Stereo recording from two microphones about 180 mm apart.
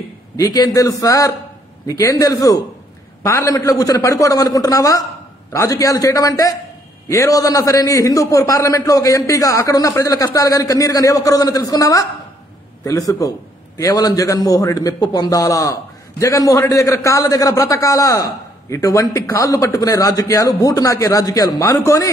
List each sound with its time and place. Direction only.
0.4 s a man's voice: 20° left (ahead or behind)